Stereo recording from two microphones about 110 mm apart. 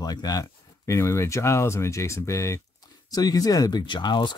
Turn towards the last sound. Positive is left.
turn(degrees=45)  # may be behind; listen again after turning